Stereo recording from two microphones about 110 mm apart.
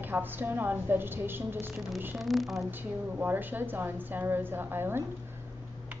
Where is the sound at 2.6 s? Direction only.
15° right (ahead or behind).